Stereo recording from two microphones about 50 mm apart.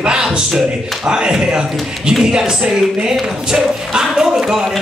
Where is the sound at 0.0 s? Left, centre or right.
Centre.